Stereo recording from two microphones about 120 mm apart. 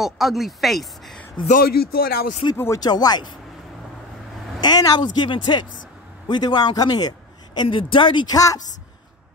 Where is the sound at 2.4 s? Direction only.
45° left (ahead or behind).